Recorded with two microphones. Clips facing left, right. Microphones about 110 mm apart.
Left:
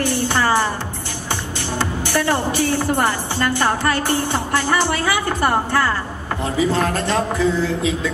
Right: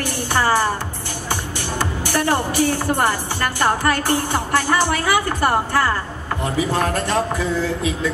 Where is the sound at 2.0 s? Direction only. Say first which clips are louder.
Even; 15° right (ahead or behind).